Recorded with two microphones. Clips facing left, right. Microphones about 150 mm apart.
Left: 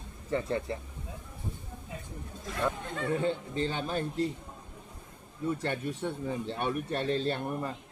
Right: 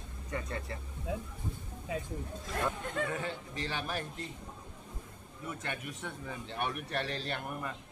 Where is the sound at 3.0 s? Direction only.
25° left (ahead or behind).